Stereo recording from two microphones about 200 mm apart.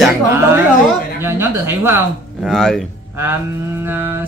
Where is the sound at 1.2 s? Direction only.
10° right (ahead or behind).